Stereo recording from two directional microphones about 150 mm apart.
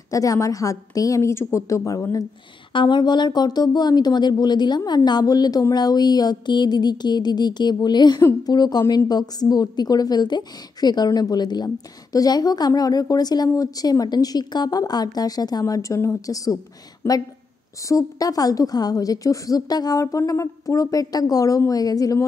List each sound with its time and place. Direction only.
0.1 s a woman's voice: 20° left (ahead or behind)
2.7 s a woman's voice: 30° left (ahead or behind)
17.8 s a woman's voice: 25° left (ahead or behind)